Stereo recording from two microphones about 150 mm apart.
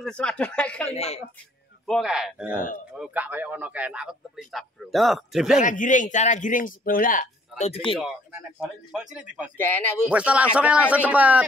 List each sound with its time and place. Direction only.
0.0 s speech: 5° left (ahead or behind)
0.8 s speech: 45° left (ahead or behind)
1.9 s a man's voice: centre (ahead or behind)
5.6 s a man's voice: 60° left (ahead or behind)
8.5 s speech: 5° right (ahead or behind)
9.6 s speech: 15° left (ahead or behind)
10.0 s a man's voice: 10° right (ahead or behind)